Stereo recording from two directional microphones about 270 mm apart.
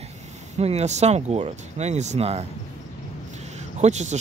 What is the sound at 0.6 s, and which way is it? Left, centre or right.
Speech, right.